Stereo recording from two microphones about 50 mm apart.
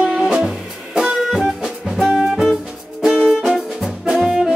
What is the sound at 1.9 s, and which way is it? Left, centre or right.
Music, centre.